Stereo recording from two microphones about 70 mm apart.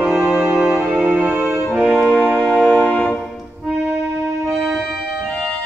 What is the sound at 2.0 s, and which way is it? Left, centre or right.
Music, centre.